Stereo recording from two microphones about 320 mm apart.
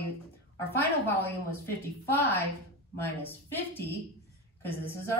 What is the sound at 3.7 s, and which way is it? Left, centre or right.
Speech, centre.